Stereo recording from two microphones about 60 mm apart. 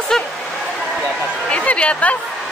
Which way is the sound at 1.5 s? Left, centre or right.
Centre.